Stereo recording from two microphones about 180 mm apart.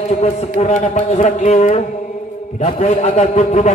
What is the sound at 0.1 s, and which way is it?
A man's voice, 40° left (ahead or behind).